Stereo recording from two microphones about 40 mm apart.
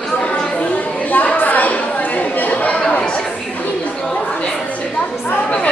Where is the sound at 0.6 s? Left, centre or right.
Left.